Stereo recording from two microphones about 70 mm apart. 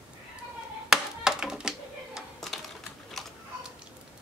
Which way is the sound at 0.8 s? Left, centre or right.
Centre.